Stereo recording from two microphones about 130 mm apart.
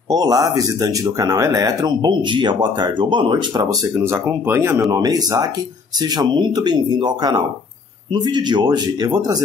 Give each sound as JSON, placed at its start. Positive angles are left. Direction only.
{"t": 0.1, "sound": "speech", "side_deg": -30}
{"t": 4.0, "sound": "speech", "side_deg": -20}
{"t": 4.9, "sound": "speech", "side_deg": -30}